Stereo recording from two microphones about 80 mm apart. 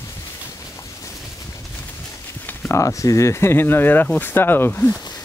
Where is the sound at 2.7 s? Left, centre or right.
Left.